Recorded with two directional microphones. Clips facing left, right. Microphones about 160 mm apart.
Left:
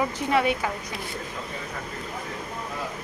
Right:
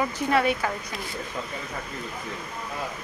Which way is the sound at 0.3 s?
15° left (ahead or behind).